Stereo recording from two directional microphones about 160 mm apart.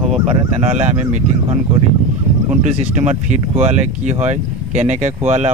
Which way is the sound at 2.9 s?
50° right (ahead or behind).